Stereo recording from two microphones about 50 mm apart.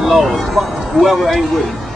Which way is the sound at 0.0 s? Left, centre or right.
Centre.